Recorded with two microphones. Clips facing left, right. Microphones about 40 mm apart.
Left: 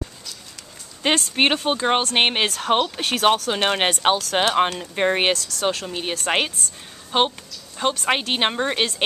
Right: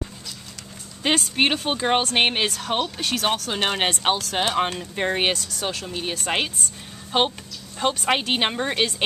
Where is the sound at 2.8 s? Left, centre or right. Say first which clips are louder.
Left 3 dB; left.